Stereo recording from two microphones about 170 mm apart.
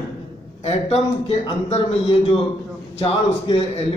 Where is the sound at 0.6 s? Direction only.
40° left (ahead or behind).